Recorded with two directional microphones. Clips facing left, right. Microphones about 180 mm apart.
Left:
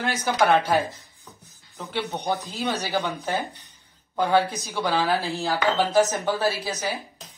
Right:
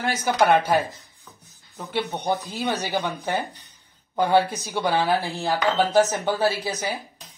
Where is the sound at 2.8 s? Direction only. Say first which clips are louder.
Even; 15° right (ahead or behind).